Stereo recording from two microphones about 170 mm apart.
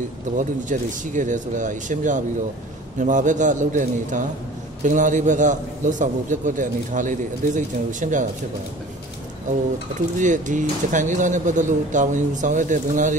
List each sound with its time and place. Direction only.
0.4 s a man's voice: 50° right (ahead or behind)
9.9 s a man's voice: 50° right (ahead or behind)